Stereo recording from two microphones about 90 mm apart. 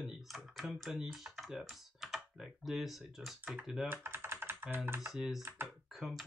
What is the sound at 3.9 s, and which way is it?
Typing, 25° right (ahead or behind).